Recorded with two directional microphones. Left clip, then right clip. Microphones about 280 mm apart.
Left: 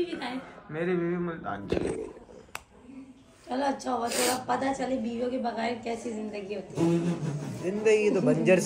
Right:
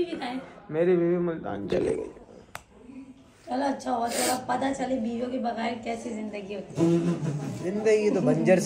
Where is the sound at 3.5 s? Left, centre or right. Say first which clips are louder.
Right 1 dB; centre.